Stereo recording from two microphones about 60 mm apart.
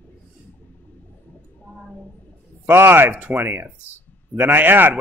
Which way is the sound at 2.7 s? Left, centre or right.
Right.